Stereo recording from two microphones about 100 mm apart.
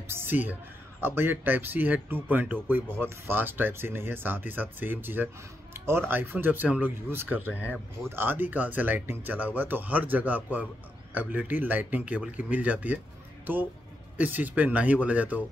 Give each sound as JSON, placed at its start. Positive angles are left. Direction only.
{"t": 0.1, "sound": "speech", "side_deg": -20}
{"t": 14.1, "sound": "speech", "side_deg": -15}